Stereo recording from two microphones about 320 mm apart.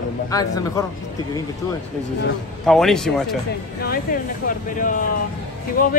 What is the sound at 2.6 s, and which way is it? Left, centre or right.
Speech, centre.